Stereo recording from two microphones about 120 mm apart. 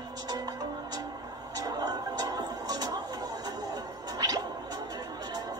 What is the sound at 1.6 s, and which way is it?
Music, 30° right (ahead or behind).